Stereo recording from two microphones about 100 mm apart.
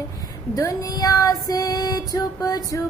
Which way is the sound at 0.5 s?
35° left (ahead or behind).